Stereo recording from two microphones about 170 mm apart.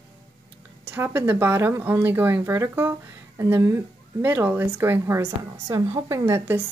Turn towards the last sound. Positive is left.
turn(degrees=-15)  # may be behind; listen again after turning